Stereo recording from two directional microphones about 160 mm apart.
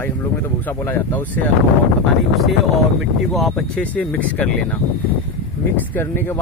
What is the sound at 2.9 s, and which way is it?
Speech, centre (ahead or behind).